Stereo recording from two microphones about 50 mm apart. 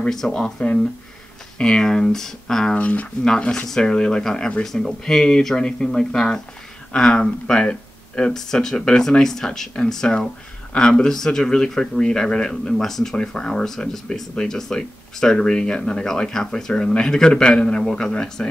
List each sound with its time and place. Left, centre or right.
0.1 s speech: centre
1.6 s speech: centre
2.7 s speech: left
3.3 s speech: centre